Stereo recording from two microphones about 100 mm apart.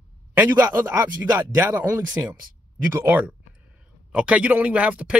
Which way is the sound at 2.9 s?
20° right (ahead or behind).